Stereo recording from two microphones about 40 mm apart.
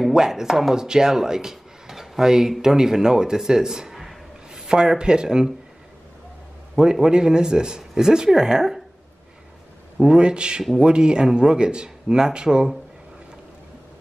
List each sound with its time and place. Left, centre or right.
0.1 s speech: centre
0.7 s speech: centre
4.5 s speech: centre
6.8 s speech: centre
10.0 s speech: right